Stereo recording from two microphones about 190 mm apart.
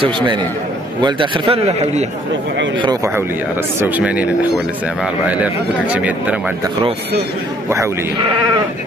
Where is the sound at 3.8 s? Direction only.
10° right (ahead or behind).